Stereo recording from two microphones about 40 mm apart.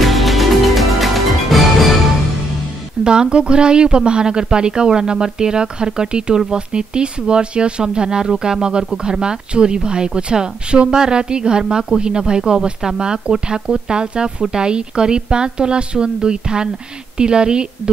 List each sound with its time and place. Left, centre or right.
0.0 s music: centre
3.0 s a woman's voice: right